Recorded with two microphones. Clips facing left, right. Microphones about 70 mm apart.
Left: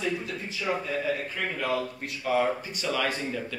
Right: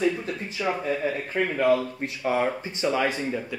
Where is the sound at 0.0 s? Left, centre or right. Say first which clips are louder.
Right 5 dB; right.